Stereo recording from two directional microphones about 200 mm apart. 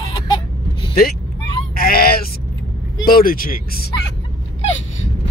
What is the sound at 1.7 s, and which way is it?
Bleat, 50° left (ahead or behind).